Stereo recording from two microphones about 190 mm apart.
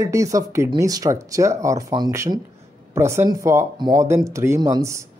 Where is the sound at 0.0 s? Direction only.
15° right (ahead or behind).